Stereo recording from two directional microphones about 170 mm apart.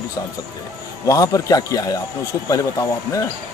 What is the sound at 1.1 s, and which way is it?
Speech, 20° left (ahead or behind).